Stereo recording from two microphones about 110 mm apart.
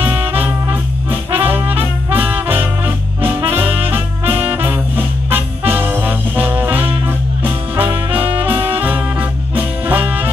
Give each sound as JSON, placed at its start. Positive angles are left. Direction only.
{"t": 0.0, "sound": "music", "side_deg": -20}
{"t": 1.3, "sound": "brass instrument", "side_deg": -20}
{"t": 2.0, "sound": "music", "side_deg": -15}
{"t": 4.3, "sound": "music", "side_deg": -55}
{"t": 4.6, "sound": "music", "side_deg": -20}
{"t": 8.1, "sound": "music", "side_deg": -55}
{"t": 8.6, "sound": "music", "side_deg": -15}